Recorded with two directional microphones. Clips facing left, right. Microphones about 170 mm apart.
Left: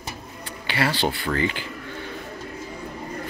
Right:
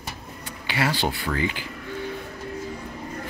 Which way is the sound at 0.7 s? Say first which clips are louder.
Left 1 dB; 10° right (ahead or behind).